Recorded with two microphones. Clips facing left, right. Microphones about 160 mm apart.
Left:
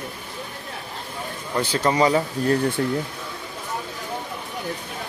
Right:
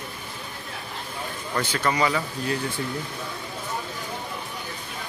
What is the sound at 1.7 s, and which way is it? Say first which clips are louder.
Speech: left 6 dB; 30° left (ahead or behind).